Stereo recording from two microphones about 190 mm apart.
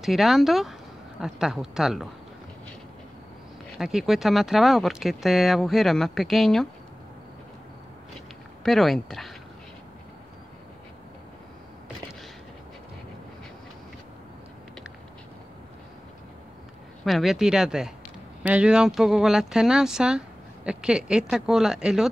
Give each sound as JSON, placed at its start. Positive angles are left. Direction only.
{"t": 0.0, "sound": "speech", "side_deg": 0}
{"t": 3.7, "sound": "speech", "side_deg": 0}
{"t": 8.6, "sound": "speech", "side_deg": 0}
{"t": 17.0, "sound": "speech", "side_deg": 0}